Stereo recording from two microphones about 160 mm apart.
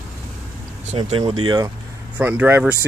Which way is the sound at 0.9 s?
35° right (ahead or behind).